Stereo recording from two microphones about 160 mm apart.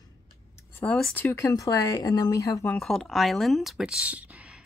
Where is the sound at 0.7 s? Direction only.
5° left (ahead or behind); by 2.7 s 20° left (ahead or behind).